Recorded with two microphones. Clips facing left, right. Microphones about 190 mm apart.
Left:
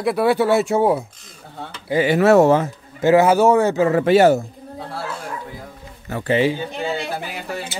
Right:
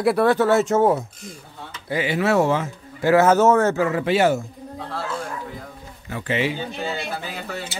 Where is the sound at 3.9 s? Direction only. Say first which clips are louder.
Left 6 dB; 45° left (ahead or behind).